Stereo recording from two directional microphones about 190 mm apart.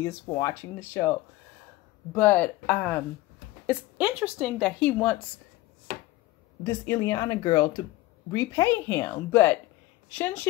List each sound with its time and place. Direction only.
0.0 s speech: 15° left (ahead or behind)
2.1 s speech: 10° left (ahead or behind)
3.6 s a woman's voice: 5° right (ahead or behind)
6.6 s speech: 20° left (ahead or behind)